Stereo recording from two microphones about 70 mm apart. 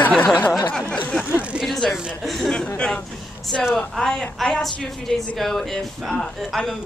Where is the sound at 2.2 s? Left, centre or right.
Centre.